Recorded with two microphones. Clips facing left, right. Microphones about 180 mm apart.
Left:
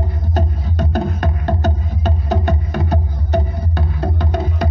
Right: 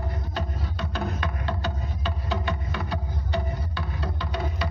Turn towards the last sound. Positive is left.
turn(degrees=45)  # may be behind; listen again after turning